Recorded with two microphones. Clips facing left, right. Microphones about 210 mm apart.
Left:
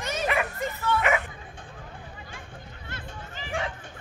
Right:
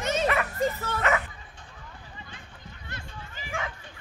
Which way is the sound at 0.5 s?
40° right (ahead or behind).